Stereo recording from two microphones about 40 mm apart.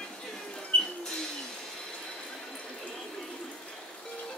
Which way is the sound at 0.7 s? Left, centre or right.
Left.